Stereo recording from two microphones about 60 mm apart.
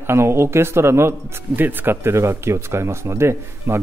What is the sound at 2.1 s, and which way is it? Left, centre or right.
Speech, right.